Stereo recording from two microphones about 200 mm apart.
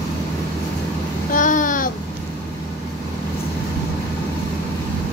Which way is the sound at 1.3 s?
40° left (ahead or behind).